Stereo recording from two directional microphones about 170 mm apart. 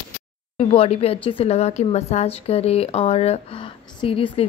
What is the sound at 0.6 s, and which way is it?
A woman's voice, 35° left (ahead or behind).